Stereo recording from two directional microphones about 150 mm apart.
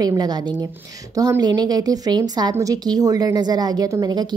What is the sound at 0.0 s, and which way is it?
Speech, 25° right (ahead or behind).